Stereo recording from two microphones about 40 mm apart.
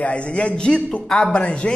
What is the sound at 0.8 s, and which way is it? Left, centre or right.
Speech, left.